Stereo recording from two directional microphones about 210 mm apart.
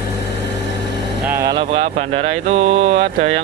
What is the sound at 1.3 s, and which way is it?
Speech, 15° right (ahead or behind).